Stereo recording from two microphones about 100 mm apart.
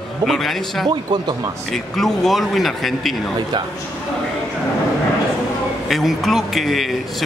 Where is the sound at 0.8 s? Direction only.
45° right (ahead or behind).